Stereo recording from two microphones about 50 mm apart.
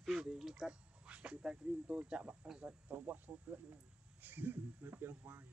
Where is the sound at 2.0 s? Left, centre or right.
Right.